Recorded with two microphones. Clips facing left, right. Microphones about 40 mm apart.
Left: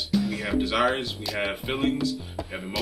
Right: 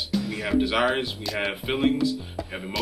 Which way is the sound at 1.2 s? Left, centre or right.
Centre.